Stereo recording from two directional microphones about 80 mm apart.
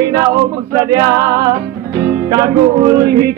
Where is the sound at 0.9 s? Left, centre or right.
Right.